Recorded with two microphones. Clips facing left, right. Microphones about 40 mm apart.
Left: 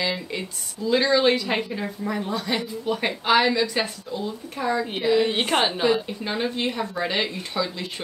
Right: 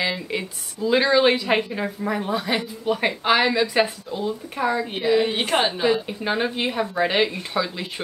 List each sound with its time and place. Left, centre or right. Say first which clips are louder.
0.3 s a woman's voice: right 3 dB; centre
4.8 s a woman's voice: right 1 dB; centre
6.0 s a woman's voice: right 3 dB; centre